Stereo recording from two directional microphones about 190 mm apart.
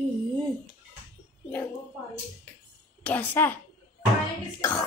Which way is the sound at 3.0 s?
10° left (ahead or behind).